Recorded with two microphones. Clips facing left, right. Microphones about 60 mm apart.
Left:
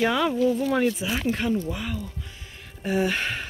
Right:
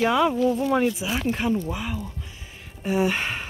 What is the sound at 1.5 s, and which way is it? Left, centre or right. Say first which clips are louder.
Speech: right 1 dB; centre.